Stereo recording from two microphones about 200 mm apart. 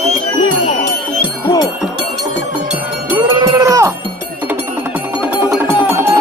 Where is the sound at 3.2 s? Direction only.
20° right (ahead or behind).